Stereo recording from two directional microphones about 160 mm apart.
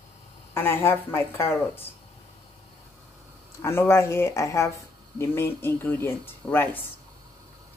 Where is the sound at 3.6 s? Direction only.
15° left (ahead or behind).